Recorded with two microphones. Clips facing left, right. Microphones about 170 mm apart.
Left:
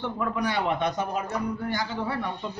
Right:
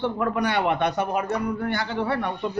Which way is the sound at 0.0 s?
65° right (ahead or behind).